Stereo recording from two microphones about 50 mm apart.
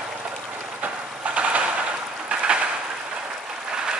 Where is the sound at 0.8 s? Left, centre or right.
Right.